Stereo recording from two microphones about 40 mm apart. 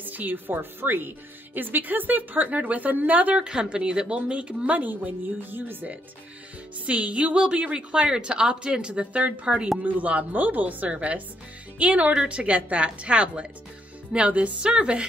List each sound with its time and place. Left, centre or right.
0.0 s speech: right
0.6 s speech: right
3.3 s a woman's voice: right
5.5 s speech: right
6.9 s a woman's voice: right
10.9 s a woman's voice: right